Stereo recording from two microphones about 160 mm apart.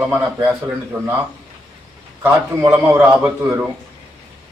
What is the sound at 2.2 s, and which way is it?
A man's voice, 10° right (ahead or behind).